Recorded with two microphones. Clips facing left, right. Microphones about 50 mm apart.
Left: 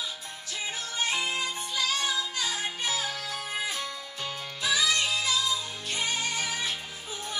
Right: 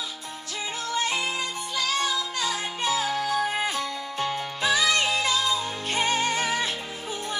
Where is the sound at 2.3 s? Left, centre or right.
Right.